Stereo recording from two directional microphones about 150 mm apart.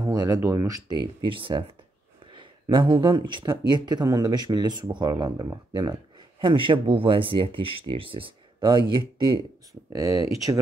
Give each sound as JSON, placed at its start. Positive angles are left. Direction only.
{"t": 0.0, "sound": "speech", "side_deg": -25}